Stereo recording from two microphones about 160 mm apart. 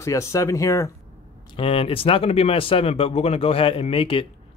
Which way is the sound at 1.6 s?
35° left (ahead or behind).